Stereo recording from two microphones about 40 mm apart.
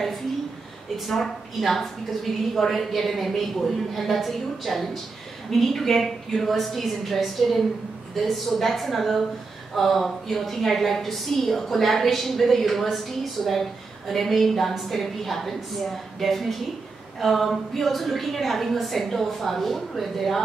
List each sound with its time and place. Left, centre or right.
1.0 s a woman's voice: centre